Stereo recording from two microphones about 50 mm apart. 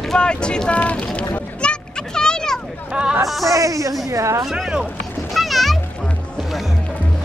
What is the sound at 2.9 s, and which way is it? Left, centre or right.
Speech, right.